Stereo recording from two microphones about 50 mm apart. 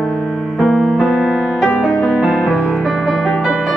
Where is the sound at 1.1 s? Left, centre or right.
Centre.